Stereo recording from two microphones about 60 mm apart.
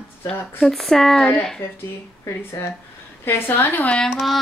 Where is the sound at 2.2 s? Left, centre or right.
Left.